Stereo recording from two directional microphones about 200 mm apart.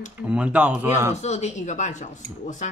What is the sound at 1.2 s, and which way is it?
Cutlery, 35° left (ahead or behind).